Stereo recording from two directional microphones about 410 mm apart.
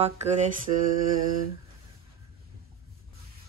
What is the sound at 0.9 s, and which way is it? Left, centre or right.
Mantra, centre.